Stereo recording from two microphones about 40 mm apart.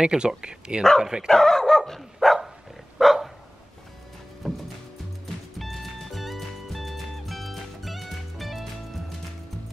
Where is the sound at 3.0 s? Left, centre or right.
Centre.